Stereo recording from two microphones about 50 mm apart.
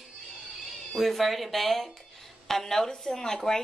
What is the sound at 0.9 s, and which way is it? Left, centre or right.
Speech, centre.